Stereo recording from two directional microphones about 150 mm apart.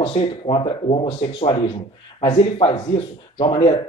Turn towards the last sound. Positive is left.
turn(degrees=40)  # may be behind; listen again after turning